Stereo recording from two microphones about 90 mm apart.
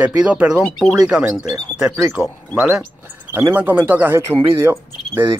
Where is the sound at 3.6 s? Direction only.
20° right (ahead or behind).